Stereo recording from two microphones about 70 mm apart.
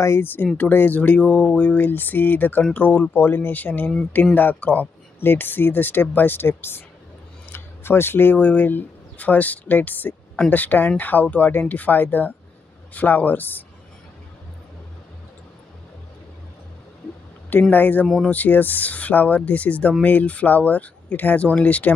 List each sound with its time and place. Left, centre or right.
0.0 s speech: left
17.5 s speech: left